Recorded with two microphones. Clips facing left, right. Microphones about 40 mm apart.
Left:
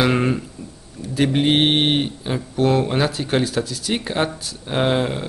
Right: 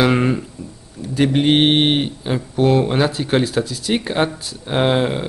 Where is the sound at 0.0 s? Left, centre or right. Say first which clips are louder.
Right 2 dB; centre.